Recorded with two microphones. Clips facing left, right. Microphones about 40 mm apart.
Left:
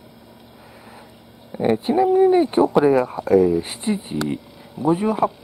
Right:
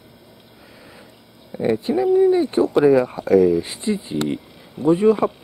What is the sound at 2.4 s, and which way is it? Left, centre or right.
Speech, left.